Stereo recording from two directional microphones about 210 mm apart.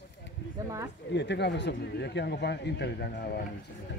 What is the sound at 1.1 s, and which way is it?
Speech, 55° left (ahead or behind).